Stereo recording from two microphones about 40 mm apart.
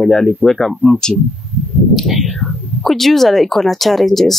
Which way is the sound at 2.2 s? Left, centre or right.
Left.